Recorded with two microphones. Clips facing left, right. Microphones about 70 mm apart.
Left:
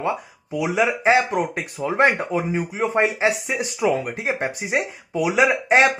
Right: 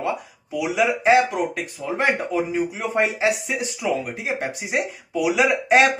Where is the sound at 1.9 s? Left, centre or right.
Left.